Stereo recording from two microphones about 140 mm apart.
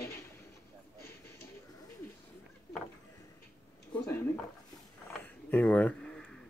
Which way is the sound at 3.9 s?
10° left (ahead or behind).